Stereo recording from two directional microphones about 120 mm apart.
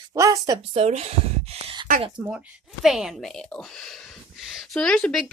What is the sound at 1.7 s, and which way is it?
Speech, 40° right (ahead or behind).